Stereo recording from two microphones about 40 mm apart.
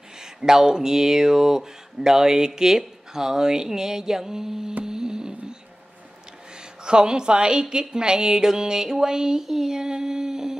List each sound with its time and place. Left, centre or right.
0.2 s speech: centre
4.8 s music: centre
6.8 s a woman's voice: right
7.9 s a sound: centre